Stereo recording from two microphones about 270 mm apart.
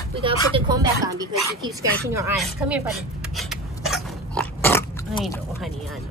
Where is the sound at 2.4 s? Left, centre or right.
Centre.